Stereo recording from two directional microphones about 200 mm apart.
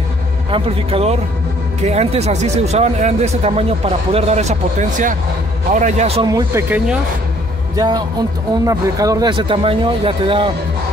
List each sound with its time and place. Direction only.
0.5 s speech: 30° right (ahead or behind)
6.2 s speech: 20° right (ahead or behind)
7.7 s speech: 20° right (ahead or behind)